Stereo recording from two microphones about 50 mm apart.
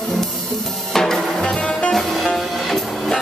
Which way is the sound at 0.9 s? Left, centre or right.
Centre.